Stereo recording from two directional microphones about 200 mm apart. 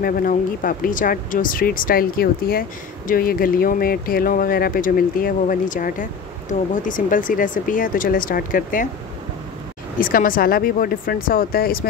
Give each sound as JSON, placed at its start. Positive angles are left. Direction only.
{"t": 0.0, "sound": "speech", "side_deg": 45}
{"t": 9.9, "sound": "speech", "side_deg": 45}